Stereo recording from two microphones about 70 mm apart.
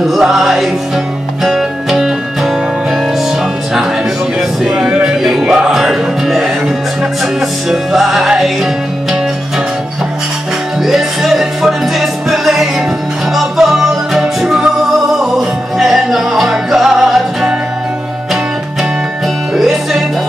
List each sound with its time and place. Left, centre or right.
0.2 s music: centre
4.4 s a sound: centre
5.0 s music: centre
7.7 s music: centre
10.9 s music: centre
19.5 s music: centre